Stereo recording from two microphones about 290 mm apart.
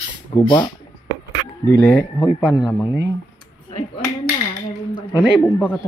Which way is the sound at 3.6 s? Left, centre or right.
Centre.